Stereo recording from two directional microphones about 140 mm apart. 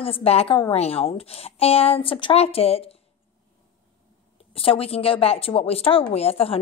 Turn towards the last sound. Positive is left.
turn(degrees=45)  # may be behind; listen again after turning